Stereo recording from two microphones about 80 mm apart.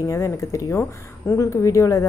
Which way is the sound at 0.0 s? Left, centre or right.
Left.